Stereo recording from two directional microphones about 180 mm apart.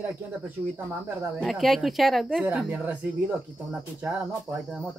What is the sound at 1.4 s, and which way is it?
Speech, centre (ahead or behind).